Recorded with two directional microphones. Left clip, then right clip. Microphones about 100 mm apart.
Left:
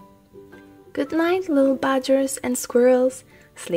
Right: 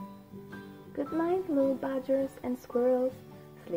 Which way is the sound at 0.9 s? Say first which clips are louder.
Left 9 dB; 45° left (ahead or behind).